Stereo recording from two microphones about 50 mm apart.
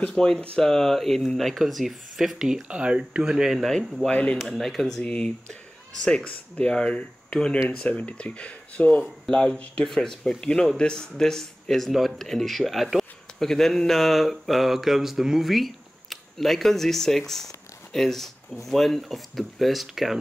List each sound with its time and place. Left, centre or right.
0.1 s speech: centre
2.8 s speech: right
3.3 s speech: centre
4.1 s speech: left
4.4 s speech: centre
5.0 s speech: centre
9.2 s speech: centre